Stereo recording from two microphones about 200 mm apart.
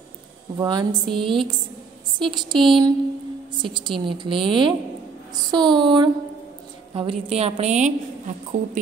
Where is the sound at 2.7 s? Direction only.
25° right (ahead or behind).